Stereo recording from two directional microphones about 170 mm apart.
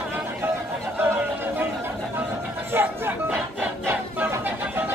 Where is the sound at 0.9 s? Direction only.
10° right (ahead or behind).